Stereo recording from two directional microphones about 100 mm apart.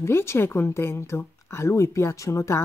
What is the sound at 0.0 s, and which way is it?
Speech, 25° left (ahead or behind).